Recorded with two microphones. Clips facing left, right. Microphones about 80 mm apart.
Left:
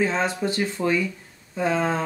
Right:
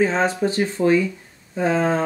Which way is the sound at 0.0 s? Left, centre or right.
Right.